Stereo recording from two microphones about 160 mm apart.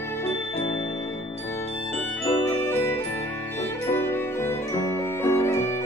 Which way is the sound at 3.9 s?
15° left (ahead or behind).